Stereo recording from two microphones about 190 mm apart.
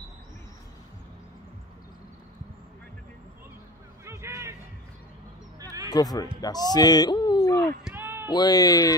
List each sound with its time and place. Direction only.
4.0 s vehicle: 15° right (ahead or behind)
5.9 s speech: 20° left (ahead or behind)
7.8 s a sound: 10° right (ahead or behind)
8.3 s speech: 20° left (ahead or behind)